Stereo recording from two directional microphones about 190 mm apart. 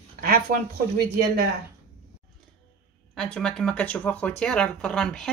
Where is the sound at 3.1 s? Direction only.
5° left (ahead or behind).